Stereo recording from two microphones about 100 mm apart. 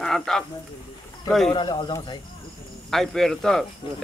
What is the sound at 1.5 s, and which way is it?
Speech, 50° left (ahead or behind).